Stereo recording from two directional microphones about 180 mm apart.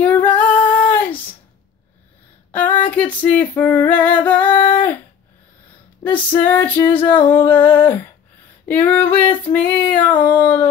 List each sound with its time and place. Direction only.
0.0 s singing: 10° left (ahead or behind)
0.5 s singing: 30° left (ahead or behind)
0.8 s a sound: 10° left (ahead or behind)
2.9 s female singing: 10° left (ahead or behind)
6.0 s female singing: 10° left (ahead or behind)